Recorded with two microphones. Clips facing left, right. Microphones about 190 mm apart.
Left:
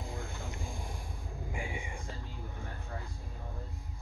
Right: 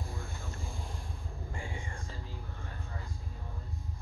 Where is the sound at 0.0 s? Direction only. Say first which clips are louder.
Left 2 dB; 20° left (ahead or behind).